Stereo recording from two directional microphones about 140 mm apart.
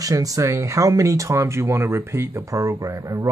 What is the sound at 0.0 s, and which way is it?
Speech, 25° right (ahead or behind).